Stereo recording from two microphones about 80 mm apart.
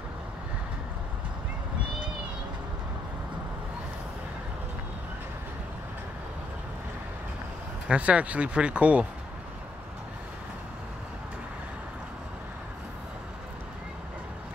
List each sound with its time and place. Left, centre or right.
7.9 s speech: centre